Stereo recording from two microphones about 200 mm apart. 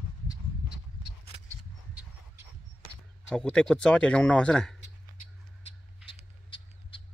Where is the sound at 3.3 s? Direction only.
5° left (ahead or behind).